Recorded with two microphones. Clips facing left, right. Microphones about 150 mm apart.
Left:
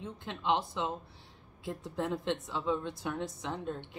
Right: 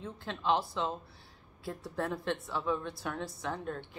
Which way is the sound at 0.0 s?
20° left (ahead or behind).